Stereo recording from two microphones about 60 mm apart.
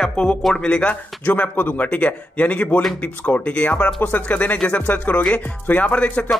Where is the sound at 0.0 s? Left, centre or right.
Centre.